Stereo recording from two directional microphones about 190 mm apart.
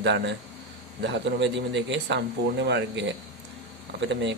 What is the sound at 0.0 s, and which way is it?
Speech, 65° right (ahead or behind).